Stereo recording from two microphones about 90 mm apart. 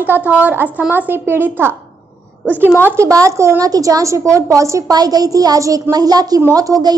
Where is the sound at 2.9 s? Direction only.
35° right (ahead or behind).